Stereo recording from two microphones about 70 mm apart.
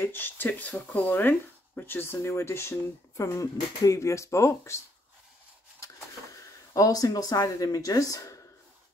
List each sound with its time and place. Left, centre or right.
0.0 s speech: left
6.3 s speech: left